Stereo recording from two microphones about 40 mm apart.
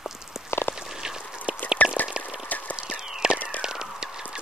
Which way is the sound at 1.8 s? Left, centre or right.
Left.